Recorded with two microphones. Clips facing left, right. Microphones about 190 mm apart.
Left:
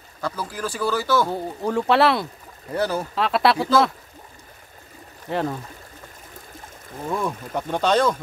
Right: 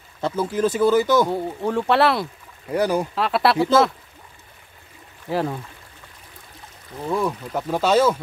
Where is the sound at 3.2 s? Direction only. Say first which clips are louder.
Left 1 dB; centre (ahead or behind).